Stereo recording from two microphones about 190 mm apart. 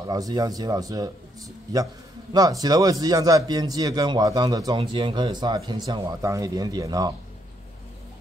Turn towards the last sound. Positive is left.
turn(degrees=-20)  # may be behind; listen again after turning